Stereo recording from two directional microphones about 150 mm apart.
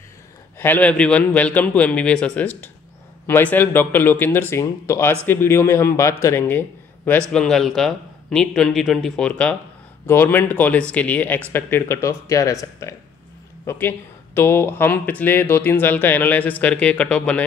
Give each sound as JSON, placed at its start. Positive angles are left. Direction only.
{"t": 0.6, "sound": "speech", "side_deg": 10}
{"t": 7.1, "sound": "a man's voice", "side_deg": 5}